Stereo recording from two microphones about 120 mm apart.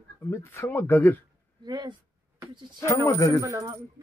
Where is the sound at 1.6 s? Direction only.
35° right (ahead or behind).